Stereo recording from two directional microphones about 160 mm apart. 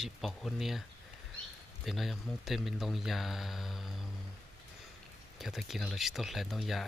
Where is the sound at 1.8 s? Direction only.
Centre (ahead or behind).